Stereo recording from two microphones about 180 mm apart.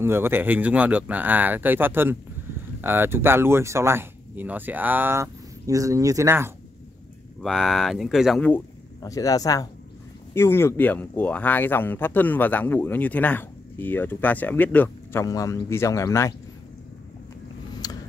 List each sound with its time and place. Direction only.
0.0 s speech: 15° right (ahead or behind)
7.4 s speech: centre (ahead or behind)
8.5 s speech: 15° left (ahead or behind)
17.8 s a sound: 20° left (ahead or behind)